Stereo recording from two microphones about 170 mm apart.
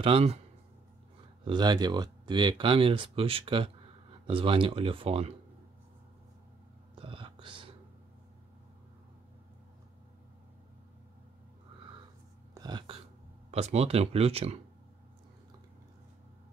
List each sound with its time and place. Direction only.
0.0 s speech: 35° right (ahead or behind)
1.4 s speech: 25° right (ahead or behind)
7.0 s whispering: 30° right (ahead or behind)
12.5 s a sound: 25° right (ahead or behind)
13.5 s speech: 40° right (ahead or behind)